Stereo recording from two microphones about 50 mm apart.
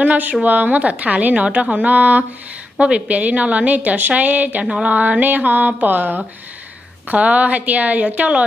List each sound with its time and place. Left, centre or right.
0.0 s a woman's voice: right